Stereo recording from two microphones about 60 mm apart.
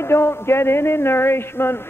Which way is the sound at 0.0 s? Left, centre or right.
Left.